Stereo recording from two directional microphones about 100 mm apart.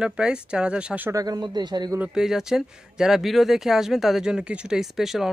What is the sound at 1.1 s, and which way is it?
Speech, 40° right (ahead or behind).